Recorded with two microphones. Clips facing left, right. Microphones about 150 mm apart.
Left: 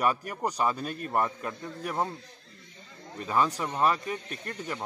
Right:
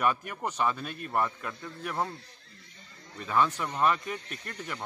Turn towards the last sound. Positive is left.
turn(degrees=35)  # may be behind; listen again after turning